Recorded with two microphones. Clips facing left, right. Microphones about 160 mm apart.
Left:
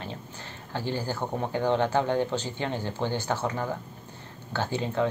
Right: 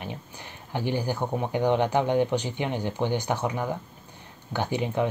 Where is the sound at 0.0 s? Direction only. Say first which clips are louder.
Right 1 dB; 15° right (ahead or behind).